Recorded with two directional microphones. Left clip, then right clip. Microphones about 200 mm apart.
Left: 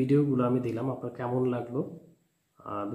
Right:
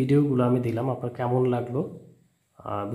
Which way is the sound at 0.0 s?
35° right (ahead or behind).